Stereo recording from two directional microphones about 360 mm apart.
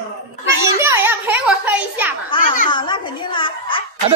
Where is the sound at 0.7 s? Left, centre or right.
Centre.